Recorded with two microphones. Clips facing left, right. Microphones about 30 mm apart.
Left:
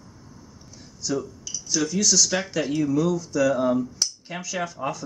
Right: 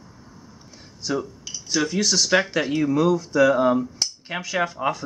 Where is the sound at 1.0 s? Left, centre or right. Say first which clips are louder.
Right 1 dB; right.